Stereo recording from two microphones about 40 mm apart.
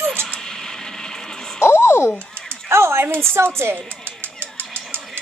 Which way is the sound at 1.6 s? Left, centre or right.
Left.